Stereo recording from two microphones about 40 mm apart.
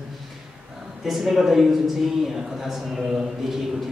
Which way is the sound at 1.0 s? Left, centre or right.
Centre.